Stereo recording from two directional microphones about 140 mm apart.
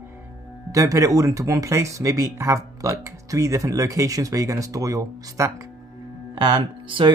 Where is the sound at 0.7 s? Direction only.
20° right (ahead or behind).